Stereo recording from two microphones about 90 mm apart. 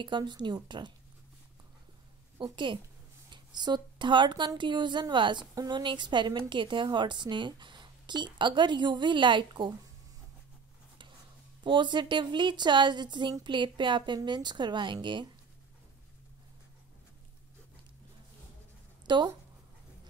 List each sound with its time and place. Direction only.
0.0 s a woman's voice: 60° right (ahead or behind)
2.3 s a woman's voice: 60° right (ahead or behind)
11.6 s a woman's voice: 60° right (ahead or behind)
19.0 s speech: 55° right (ahead or behind)